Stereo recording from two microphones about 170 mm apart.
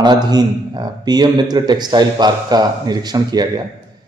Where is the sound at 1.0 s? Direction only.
25° right (ahead or behind).